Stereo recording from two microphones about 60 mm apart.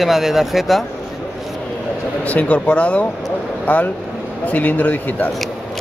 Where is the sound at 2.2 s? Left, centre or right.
Left.